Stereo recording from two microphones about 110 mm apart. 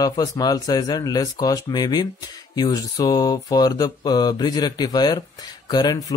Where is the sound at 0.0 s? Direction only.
35° left (ahead or behind).